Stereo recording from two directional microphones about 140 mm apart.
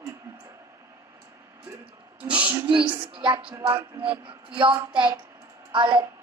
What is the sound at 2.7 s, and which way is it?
Speech, 35° right (ahead or behind).